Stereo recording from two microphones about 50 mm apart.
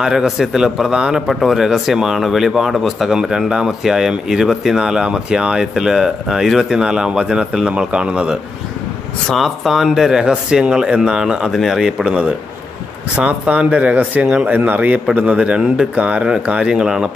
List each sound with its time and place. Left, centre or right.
0.0 s speech: centre
1.2 s speech: centre; by 8.4 s right
9.4 s speech: centre
10.2 s speech: centre
12.0 s speech: right
13.3 s speech: right; by 17.1 s centre